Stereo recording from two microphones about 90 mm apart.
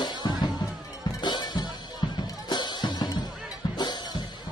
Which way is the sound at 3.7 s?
55° left (ahead or behind).